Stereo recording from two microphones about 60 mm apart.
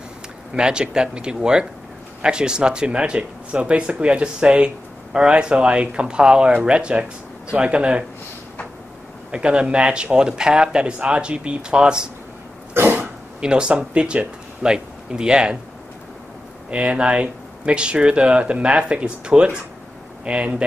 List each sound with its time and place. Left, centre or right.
0.6 s speech: centre
9.3 s speech: centre
12.7 s cough: right
13.4 s speech: centre
16.7 s speech: centre